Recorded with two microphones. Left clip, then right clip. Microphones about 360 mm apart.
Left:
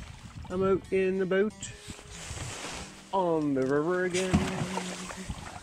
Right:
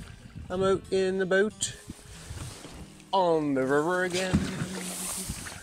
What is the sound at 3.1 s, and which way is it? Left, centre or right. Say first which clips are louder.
Speech: right 3 dB; right.